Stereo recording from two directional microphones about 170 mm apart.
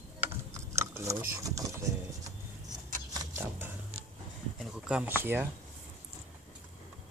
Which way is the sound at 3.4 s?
15° right (ahead or behind).